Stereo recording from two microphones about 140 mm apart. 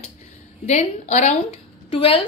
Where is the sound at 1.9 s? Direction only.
40° left (ahead or behind).